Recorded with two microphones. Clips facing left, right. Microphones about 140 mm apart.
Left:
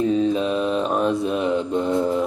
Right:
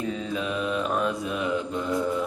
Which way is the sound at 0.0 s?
30° left (ahead or behind).